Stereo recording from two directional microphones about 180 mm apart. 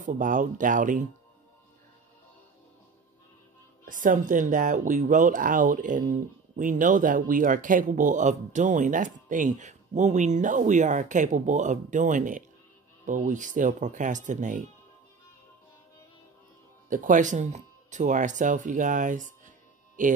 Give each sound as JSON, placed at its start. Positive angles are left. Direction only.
{"t": 0.0, "sound": "speech", "side_deg": -45}
{"t": 3.8, "sound": "speech", "side_deg": -50}
{"t": 16.9, "sound": "speech", "side_deg": -45}